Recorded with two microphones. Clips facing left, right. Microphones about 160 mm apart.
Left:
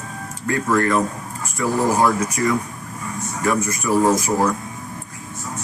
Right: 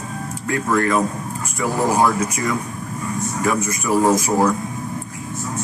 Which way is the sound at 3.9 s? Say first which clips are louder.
Even; 15° right (ahead or behind).